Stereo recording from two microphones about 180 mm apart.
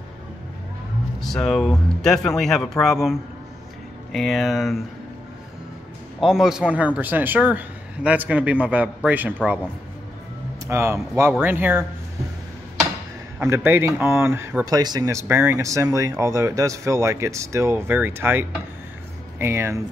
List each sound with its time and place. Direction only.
1.2 s speech: centre (ahead or behind)
6.2 s speech: 5° right (ahead or behind)
10.7 s speech: 15° right (ahead or behind)
13.4 s speech: 15° right (ahead or behind)